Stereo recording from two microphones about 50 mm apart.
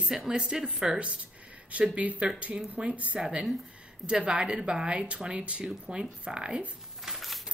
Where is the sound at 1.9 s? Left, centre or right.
Right.